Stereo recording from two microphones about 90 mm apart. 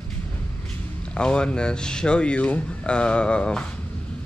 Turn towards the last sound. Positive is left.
turn(degrees=10)  # may be behind; listen again after turning